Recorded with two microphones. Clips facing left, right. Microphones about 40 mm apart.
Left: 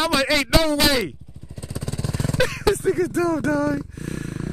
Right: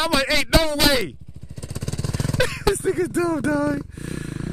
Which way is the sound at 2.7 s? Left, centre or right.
Right.